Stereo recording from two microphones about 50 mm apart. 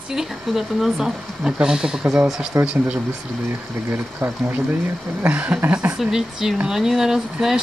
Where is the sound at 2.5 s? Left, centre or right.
Right.